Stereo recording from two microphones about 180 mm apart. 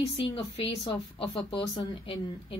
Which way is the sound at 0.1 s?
30° left (ahead or behind).